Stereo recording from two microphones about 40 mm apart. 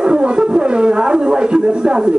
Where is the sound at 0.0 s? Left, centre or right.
Right.